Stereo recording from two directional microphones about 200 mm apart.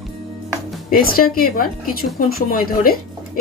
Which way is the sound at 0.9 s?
45° left (ahead or behind).